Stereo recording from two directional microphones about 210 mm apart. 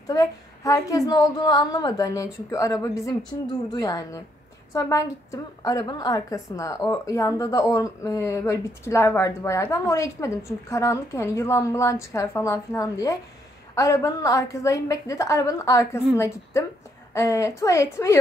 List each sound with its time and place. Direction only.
0.0 s a woman's voice: 15° left (ahead or behind)
17.1 s a woman's voice: 15° left (ahead or behind)